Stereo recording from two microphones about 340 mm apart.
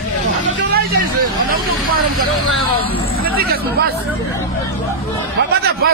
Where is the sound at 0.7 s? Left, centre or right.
Right.